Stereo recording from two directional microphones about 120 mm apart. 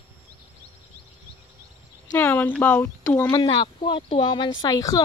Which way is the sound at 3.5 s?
40° left (ahead or behind).